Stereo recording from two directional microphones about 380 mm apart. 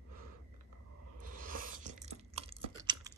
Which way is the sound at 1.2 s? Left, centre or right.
Right.